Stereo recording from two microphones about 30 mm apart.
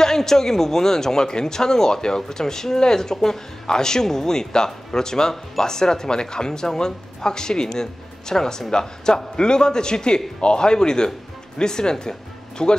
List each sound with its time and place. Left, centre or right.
0.0 s speech: centre